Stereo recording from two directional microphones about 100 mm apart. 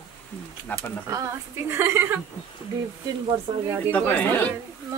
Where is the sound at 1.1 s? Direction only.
25° right (ahead or behind).